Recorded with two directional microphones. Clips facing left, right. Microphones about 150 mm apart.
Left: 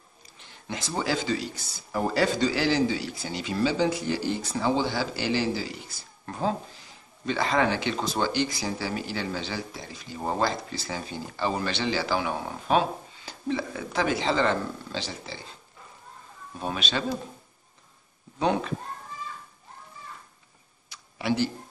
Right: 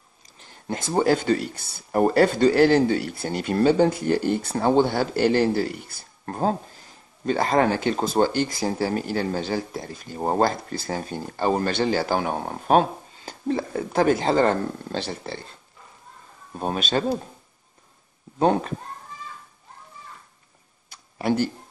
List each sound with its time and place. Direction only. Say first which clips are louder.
0.4 s speech: right 5 dB; 45° right (ahead or behind)
16.5 s speech: right 6 dB; 45° right (ahead or behind)
18.4 s speech: right 5 dB; 45° right (ahead or behind)
20.9 s a sound: right 4 dB; 45° right (ahead or behind)